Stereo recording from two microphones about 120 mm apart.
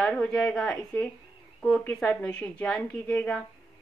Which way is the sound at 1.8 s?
10° left (ahead or behind).